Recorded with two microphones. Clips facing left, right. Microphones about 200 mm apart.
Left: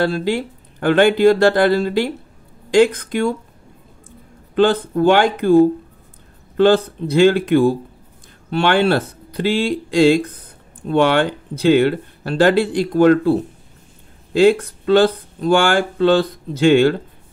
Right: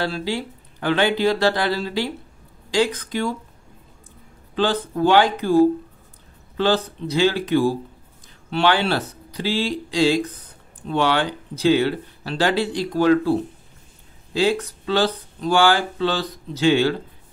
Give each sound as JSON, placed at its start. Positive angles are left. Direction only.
{"t": 0.0, "sound": "speech", "side_deg": 50}
{"t": 4.6, "sound": "speech", "side_deg": 55}
{"t": 14.3, "sound": "speech", "side_deg": 55}